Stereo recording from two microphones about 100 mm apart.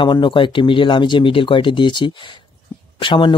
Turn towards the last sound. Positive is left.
turn(degrees=55)  # may be behind; listen again after turning